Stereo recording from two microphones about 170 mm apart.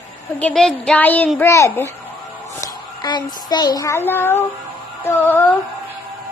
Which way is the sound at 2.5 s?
25° left (ahead or behind).